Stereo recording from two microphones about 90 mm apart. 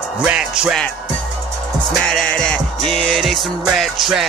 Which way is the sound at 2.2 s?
15° left (ahead or behind).